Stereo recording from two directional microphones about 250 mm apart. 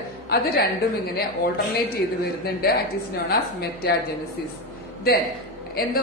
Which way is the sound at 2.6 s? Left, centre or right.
Left.